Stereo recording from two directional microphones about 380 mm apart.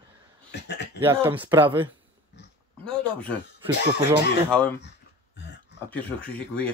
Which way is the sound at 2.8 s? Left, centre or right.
Centre.